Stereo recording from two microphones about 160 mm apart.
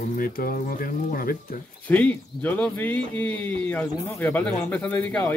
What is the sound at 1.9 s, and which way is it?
Speech, 10° left (ahead or behind).